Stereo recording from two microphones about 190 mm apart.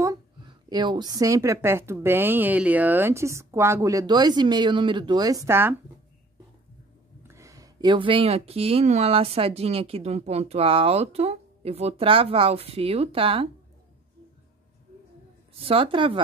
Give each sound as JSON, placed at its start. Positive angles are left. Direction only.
{"t": 0.0, "sound": "a woman's voice", "side_deg": -20}
{"t": 7.2, "sound": "speech", "side_deg": -15}
{"t": 15.6, "sound": "a woman's voice", "side_deg": -30}